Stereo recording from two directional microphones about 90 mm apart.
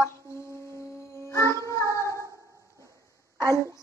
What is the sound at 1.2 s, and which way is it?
Music, 35° left (ahead or behind).